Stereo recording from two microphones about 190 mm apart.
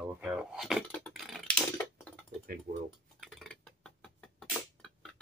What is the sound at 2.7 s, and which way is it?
Speech, 35° right (ahead or behind).